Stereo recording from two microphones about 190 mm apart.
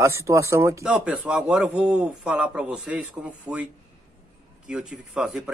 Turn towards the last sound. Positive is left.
turn(degrees=-5)  # may be behind; listen again after turning